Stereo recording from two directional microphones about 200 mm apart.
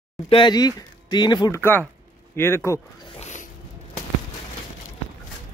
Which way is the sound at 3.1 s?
35° left (ahead or behind).